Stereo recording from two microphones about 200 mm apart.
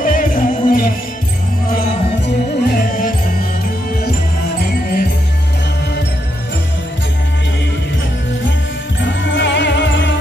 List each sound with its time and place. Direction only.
0.0 s music: 45° left (ahead or behind)
4.6 s music: 50° left (ahead or behind)
9.0 s music: 65° left (ahead or behind)